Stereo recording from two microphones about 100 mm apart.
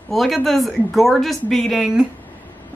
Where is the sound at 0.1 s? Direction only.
Centre (ahead or behind).